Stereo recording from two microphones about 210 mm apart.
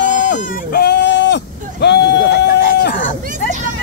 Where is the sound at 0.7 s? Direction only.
50° left (ahead or behind).